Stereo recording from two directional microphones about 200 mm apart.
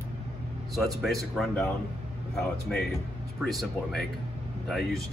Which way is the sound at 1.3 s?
5° left (ahead or behind).